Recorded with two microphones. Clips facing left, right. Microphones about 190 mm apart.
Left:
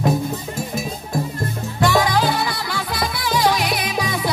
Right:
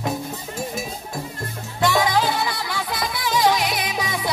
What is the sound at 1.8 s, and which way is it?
Music, 20° right (ahead or behind).